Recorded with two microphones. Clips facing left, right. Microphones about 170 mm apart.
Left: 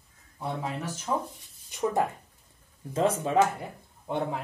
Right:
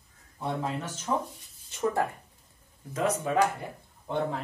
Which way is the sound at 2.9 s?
30° left (ahead or behind).